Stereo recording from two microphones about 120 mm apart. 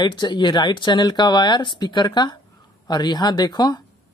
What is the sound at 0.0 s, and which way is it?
Speech, 40° left (ahead or behind).